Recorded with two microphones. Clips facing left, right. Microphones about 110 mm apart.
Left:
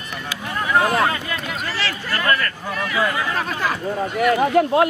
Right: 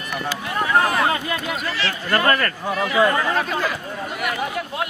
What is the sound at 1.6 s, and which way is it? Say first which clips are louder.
Speech: even; 35° left (ahead or behind).